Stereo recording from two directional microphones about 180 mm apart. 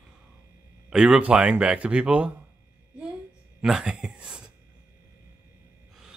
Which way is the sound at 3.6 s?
5° right (ahead or behind).